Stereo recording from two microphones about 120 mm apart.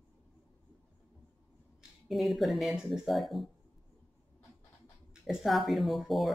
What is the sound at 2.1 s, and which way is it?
Speech, centre (ahead or behind).